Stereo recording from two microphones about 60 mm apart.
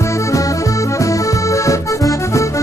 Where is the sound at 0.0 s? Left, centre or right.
Left.